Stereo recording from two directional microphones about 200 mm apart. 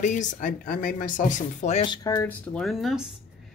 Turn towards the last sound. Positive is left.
turn(degrees=0)  # may be behind; listen again after turning